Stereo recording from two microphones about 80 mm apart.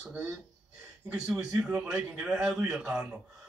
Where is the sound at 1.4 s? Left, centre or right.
Centre.